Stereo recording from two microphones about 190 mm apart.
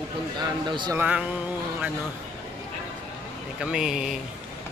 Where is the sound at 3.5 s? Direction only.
5° right (ahead or behind).